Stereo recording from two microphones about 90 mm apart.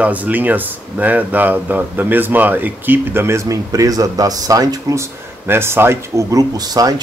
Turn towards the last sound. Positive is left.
turn(degrees=-45)  # may be behind; listen again after turning